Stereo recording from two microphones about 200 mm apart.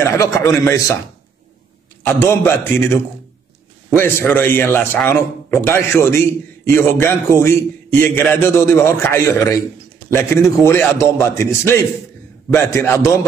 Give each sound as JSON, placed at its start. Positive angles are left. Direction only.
{"t": 0.0, "sound": "a man's voice", "side_deg": 15}
{"t": 2.0, "sound": "a man's voice", "side_deg": 10}
{"t": 10.6, "sound": "a man's voice", "side_deg": 10}